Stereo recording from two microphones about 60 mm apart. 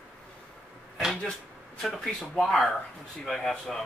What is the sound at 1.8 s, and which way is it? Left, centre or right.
Speech, centre.